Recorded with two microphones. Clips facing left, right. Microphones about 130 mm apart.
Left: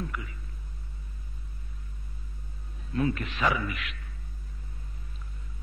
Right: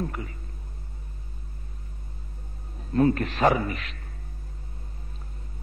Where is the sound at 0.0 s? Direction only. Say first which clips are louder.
Right 5 dB; 40° right (ahead or behind).